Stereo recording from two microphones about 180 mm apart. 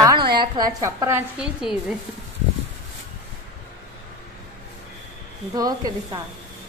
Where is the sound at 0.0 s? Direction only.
20° right (ahead or behind).